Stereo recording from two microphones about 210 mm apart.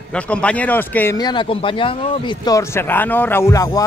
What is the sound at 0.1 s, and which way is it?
Speech, 5° left (ahead or behind).